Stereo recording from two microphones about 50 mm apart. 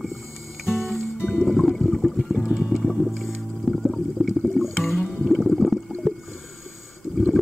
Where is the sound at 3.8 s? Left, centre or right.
Centre.